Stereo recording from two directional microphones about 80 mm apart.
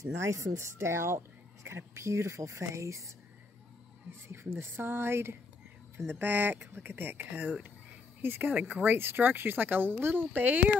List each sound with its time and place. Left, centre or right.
0.0 s speech: right
4.3 s speech: right